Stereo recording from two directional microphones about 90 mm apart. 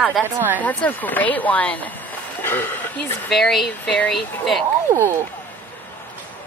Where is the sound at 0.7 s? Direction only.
20° left (ahead or behind).